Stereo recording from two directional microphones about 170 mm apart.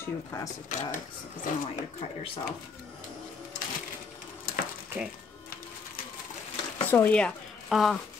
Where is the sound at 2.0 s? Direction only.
35° left (ahead or behind).